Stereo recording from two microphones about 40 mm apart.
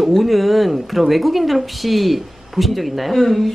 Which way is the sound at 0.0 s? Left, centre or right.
Centre.